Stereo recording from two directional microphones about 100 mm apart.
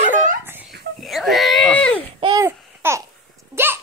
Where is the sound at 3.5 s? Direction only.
25° right (ahead or behind).